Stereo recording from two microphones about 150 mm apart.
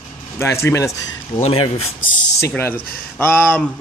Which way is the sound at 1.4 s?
40° left (ahead or behind).